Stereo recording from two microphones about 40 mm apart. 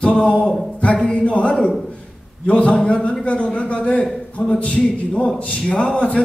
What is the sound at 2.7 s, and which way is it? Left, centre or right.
A man's voice, centre.